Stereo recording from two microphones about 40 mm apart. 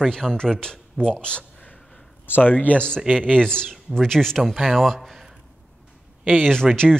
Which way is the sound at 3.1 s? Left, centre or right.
Right.